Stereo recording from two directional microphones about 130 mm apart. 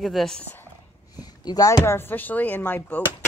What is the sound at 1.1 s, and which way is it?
Speech, 30° left (ahead or behind).